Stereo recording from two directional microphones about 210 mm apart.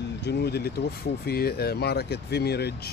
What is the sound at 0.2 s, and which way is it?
Speech, 50° left (ahead or behind).